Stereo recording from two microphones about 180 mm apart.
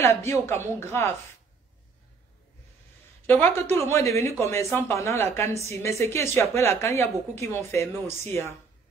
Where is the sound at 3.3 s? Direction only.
10° left (ahead or behind).